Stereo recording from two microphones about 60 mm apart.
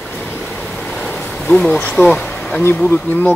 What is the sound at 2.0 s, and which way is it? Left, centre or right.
Speech, left.